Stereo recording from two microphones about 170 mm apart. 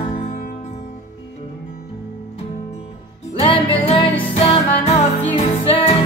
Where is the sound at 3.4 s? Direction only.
35° left (ahead or behind).